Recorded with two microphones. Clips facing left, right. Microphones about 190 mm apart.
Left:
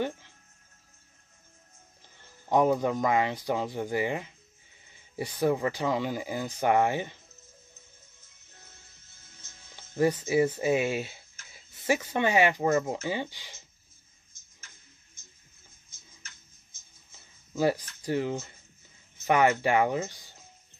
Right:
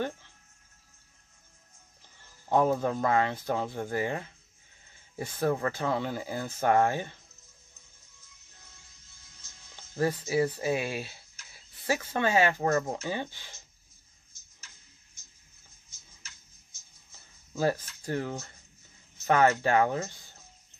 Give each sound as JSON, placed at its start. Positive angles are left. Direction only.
{"t": 2.5, "sound": "speech", "side_deg": 15}
{"t": 9.9, "sound": "speech", "side_deg": 20}
{"t": 15.9, "sound": "tick-tock", "side_deg": 55}
{"t": 17.6, "sound": "speech", "side_deg": 15}